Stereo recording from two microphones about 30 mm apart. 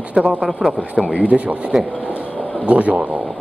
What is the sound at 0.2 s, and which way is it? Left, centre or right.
Speech, right.